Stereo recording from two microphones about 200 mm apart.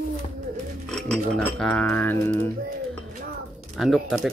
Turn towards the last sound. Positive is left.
turn(degrees=0)  # may be behind; listen again after turning